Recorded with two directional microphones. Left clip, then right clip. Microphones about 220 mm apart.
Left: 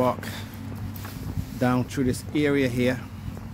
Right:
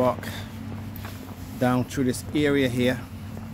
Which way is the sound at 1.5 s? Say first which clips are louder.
Right 1 dB; 5° left (ahead or behind).